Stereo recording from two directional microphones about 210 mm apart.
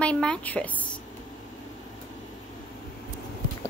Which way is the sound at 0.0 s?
5° left (ahead or behind).